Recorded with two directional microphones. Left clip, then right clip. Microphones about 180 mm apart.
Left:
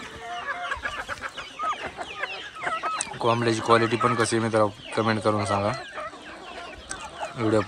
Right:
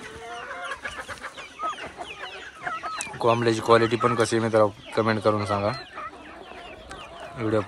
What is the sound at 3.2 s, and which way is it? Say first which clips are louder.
Speech: right 2 dB; centre (ahead or behind).